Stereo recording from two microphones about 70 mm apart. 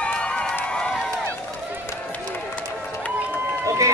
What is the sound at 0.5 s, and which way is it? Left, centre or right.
Run, centre.